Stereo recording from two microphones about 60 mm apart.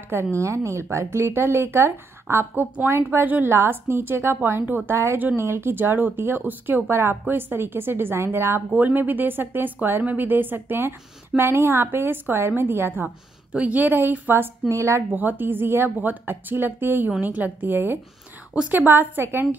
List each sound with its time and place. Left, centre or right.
0.1 s a woman's voice: right
13.5 s a woman's voice: right
14.7 s speech: right
15.1 s a woman's voice: right